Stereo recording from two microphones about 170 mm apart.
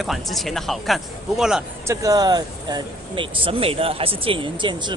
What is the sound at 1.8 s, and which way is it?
Speech, 20° right (ahead or behind).